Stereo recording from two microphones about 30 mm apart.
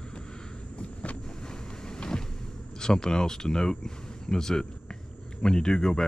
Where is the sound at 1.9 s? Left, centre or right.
Left.